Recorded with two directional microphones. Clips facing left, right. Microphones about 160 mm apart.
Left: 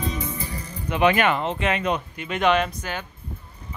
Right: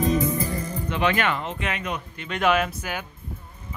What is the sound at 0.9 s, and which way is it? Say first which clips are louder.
Speech: left 4 dB; 15° left (ahead or behind).